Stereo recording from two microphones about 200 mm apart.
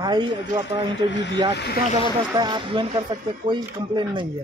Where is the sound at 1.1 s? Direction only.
65° left (ahead or behind).